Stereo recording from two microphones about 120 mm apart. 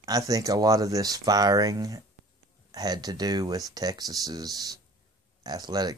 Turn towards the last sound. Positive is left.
turn(degrees=-35)  # may be behind; listen again after turning